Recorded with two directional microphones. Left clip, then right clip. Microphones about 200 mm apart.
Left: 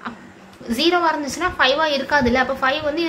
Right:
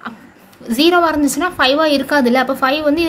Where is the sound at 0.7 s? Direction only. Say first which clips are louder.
Right 5 dB; 45° right (ahead or behind).